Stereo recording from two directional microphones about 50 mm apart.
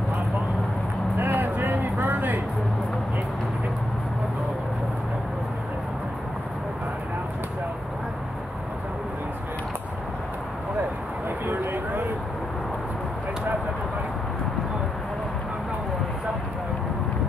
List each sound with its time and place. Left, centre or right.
1.1 s vehicle: right
11.4 s vehicle: right